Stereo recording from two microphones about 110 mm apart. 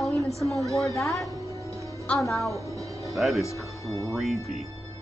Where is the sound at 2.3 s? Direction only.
Centre (ahead or behind).